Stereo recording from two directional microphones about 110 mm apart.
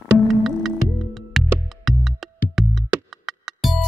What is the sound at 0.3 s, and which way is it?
Music, centre (ahead or behind).